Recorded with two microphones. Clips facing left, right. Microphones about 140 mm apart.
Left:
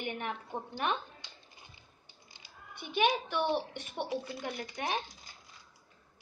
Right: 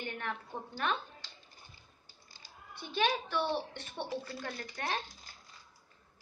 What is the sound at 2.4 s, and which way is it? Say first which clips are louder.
A child's voice: left 1 dB; 15° left (ahead or behind).